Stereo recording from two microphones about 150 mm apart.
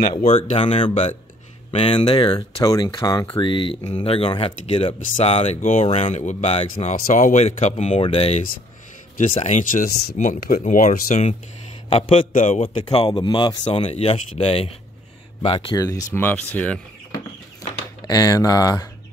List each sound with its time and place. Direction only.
0.0 s speech: 35° left (ahead or behind)
3.8 s speech: 45° left (ahead or behind); by 10.1 s 75° left (ahead or behind)
10.1 s speech: 60° left (ahead or behind)
11.9 s speech: 40° left (ahead or behind)
13.7 s speech: 40° left (ahead or behind)
15.7 s speech: 25° left (ahead or behind)
18.0 s speech: 25° left (ahead or behind)